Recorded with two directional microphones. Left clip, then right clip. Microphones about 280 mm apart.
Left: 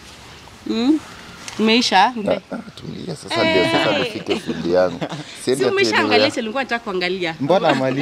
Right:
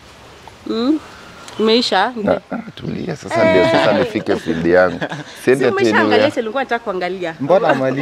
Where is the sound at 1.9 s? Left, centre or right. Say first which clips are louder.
Left 1 dB; left.